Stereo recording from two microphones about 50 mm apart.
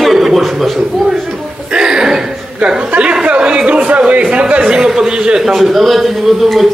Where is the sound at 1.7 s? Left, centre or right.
Centre.